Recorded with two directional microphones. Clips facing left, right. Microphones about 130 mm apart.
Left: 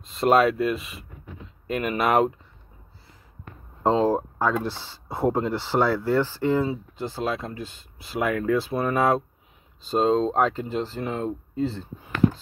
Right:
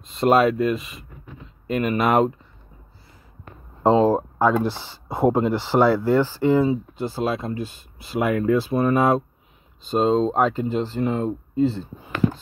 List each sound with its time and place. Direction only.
0.0 s speech: centre (ahead or behind)
3.8 s speech: 10° right (ahead or behind)